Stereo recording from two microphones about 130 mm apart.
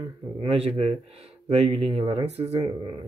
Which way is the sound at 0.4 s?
45° right (ahead or behind).